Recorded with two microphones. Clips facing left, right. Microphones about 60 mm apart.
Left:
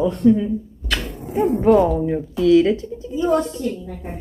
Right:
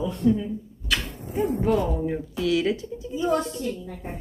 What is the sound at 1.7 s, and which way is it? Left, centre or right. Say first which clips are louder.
Speech: left 9 dB; left.